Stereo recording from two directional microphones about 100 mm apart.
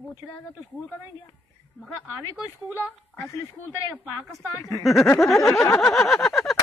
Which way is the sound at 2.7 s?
30° left (ahead or behind).